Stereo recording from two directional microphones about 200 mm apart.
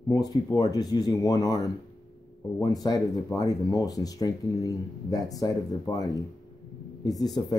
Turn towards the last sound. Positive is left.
turn(degrees=20)  # may be behind; listen again after turning